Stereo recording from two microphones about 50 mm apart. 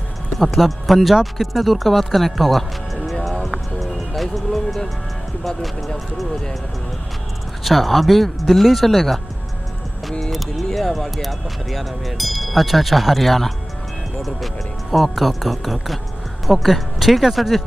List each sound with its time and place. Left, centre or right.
0.4 s speech: centre
3.3 s music: centre
5.4 s speech: centre
7.6 s speech: centre
10.2 s speech: centre